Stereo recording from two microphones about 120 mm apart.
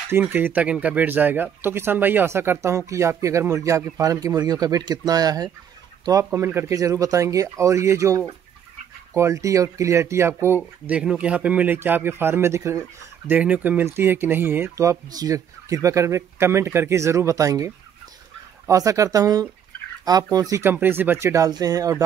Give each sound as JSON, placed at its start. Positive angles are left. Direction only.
{"t": 0.3, "sound": "speech", "side_deg": -15}
{"t": 10.9, "sound": "speech", "side_deg": -10}
{"t": 13.3, "sound": "speech", "side_deg": -10}